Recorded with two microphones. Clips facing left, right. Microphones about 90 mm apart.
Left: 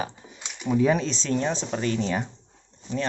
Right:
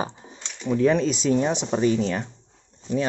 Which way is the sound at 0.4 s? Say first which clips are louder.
Right 1 dB; 10° left (ahead or behind).